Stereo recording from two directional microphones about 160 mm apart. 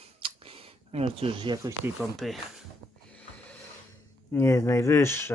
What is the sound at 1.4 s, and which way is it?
Speech, 30° right (ahead or behind).